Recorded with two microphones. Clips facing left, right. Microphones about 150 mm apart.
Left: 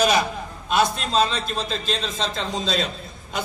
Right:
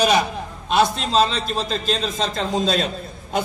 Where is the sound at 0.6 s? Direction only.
30° right (ahead or behind).